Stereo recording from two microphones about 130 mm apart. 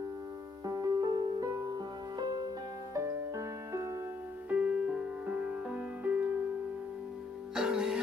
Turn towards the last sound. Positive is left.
turn(degrees=-5)  # may be behind; listen again after turning